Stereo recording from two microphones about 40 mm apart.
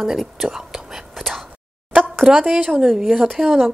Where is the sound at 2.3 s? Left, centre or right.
Centre.